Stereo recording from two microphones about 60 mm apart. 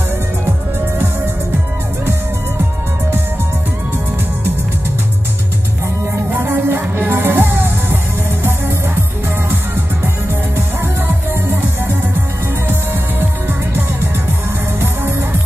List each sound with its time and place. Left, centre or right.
6.4 s music: right
11.1 s music: right